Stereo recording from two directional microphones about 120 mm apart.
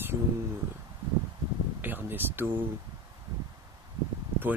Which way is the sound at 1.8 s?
15° right (ahead or behind).